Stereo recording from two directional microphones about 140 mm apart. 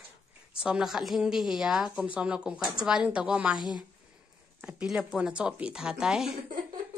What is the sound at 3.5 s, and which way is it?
Speech, 30° left (ahead or behind).